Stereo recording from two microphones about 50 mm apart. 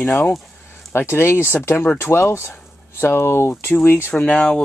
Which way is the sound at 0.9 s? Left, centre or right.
Left.